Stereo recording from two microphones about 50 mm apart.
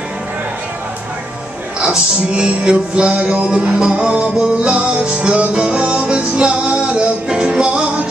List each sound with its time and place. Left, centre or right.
1.8 s music: centre